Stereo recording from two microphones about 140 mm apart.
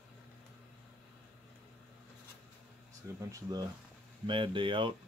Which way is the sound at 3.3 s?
30° right (ahead or behind).